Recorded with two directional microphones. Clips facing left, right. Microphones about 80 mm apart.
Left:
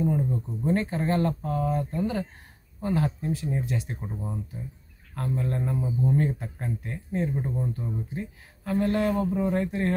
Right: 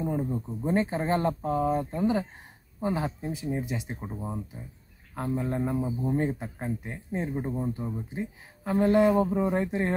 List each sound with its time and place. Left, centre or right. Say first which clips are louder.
0.0 s speech: left 3 dB; centre